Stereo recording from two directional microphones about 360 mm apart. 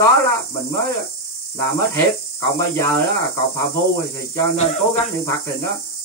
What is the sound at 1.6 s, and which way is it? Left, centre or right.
Speech, centre.